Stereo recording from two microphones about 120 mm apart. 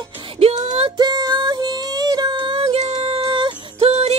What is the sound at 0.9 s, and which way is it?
Music, 35° right (ahead or behind).